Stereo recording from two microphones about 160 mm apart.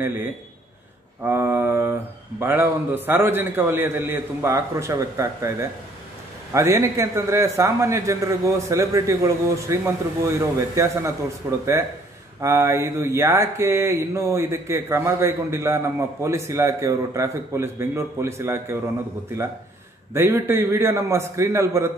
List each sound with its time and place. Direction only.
1.2 s mantra: 15° right (ahead or behind)
6.5 s a man's voice: 20° right (ahead or behind)
11.4 s mantra: 15° right (ahead or behind)
20.2 s mantra: 15° right (ahead or behind)